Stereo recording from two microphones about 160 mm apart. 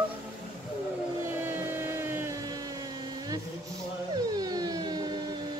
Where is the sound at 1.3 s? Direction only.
15° right (ahead or behind).